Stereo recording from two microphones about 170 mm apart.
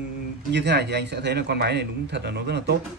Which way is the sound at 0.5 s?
85° right.